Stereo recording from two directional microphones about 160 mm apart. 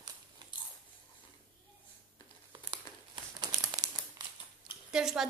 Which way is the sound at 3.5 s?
25° right (ahead or behind).